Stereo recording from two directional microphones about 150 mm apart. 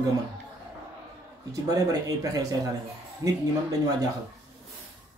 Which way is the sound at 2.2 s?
25° right (ahead or behind).